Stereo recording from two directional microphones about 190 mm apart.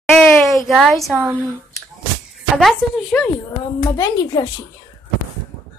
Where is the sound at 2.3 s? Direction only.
Centre (ahead or behind).